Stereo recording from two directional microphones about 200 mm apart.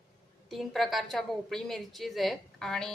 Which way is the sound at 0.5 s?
Centre (ahead or behind).